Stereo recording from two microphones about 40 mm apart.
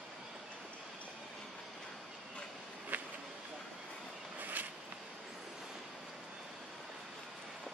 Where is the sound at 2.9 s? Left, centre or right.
Right.